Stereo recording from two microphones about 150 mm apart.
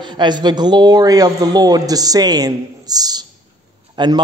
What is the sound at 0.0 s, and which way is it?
A man's voice, 30° right (ahead or behind).